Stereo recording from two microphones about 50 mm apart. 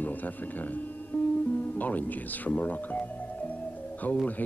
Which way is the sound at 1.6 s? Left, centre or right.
Left.